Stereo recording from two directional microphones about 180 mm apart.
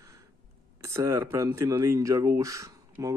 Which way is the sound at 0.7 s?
15° right (ahead or behind).